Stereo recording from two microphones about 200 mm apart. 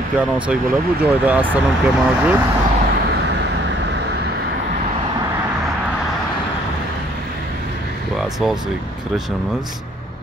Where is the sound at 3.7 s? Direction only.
60° right (ahead or behind).